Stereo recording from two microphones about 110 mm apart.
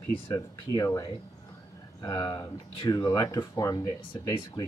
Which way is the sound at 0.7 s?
30° left (ahead or behind).